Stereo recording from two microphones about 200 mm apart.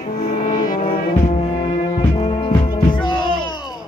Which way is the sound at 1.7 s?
30° left (ahead or behind).